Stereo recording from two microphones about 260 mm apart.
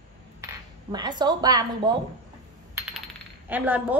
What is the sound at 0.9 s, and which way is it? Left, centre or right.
A woman's voice, centre.